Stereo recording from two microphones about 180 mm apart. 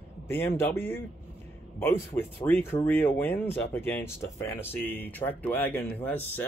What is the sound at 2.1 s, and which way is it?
Speech, 15° left (ahead or behind).